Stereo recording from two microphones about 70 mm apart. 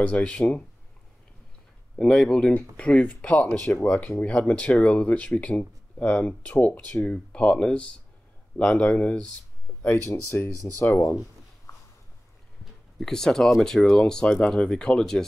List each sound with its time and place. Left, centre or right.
0.0 s speech: centre
2.0 s speech: centre
9.7 s a sound: left
10.0 s speech: left
13.0 s speech: centre